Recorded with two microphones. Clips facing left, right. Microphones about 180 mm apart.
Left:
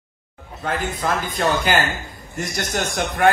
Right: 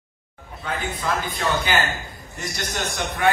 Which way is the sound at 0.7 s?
45° left (ahead or behind).